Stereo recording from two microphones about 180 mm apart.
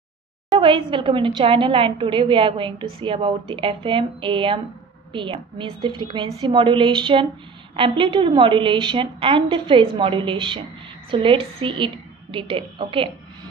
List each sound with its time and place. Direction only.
0.5 s a woman's voice: 30° right (ahead or behind)